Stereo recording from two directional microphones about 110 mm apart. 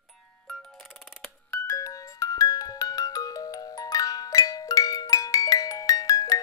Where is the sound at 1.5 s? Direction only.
25° left (ahead or behind).